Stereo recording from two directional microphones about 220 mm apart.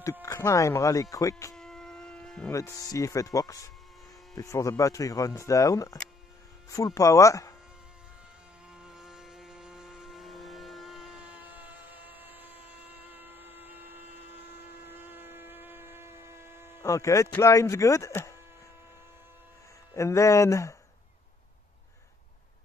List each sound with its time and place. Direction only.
0.2 s speech: 15° left (ahead or behind)
1.5 s insect: centre (ahead or behind)
2.5 s speech: 15° left (ahead or behind)
8.7 s music: 5° right (ahead or behind)
13.1 s a sound: 10° right (ahead or behind)
14.9 s a sound: 10° right (ahead or behind)
16.8 s speech: 15° left (ahead or behind)
20.0 s speech: 15° left (ahead or behind)